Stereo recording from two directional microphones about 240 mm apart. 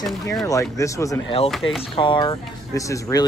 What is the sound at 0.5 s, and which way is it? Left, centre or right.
Speech, centre.